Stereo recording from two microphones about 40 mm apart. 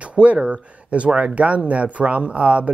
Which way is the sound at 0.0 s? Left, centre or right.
Right.